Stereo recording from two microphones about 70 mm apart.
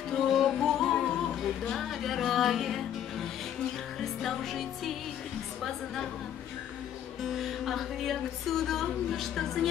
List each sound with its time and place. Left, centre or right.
0.1 s music: centre
4.0 s music: centre
5.6 s a woman's voice: centre
7.2 s music: centre